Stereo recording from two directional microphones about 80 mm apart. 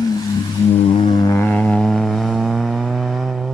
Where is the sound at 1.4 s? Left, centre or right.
Centre.